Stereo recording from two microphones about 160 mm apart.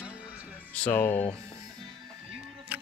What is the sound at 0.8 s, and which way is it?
Speech, 10° left (ahead or behind).